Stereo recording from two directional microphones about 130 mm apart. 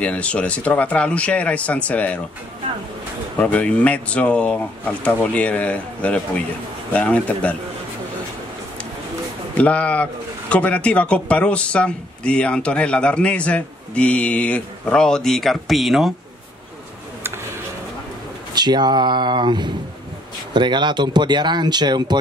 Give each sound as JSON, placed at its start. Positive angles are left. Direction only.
{"t": 0.0, "sound": "speech", "side_deg": 10}
{"t": 3.3, "sound": "speech", "side_deg": 10}
{"t": 9.6, "sound": "speech", "side_deg": 10}
{"t": 18.5, "sound": "speech", "side_deg": -35}